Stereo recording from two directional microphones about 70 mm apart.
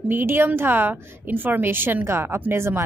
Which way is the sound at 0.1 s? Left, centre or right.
Right.